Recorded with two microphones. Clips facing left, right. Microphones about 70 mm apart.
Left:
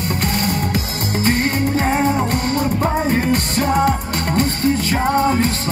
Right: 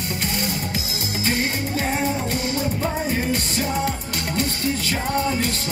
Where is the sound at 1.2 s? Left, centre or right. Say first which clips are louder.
Left 6 dB; left.